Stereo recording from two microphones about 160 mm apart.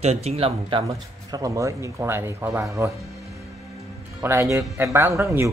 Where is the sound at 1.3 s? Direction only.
20° right (ahead or behind).